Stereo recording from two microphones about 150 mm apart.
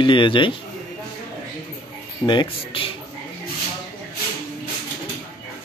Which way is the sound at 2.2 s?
30° left (ahead or behind).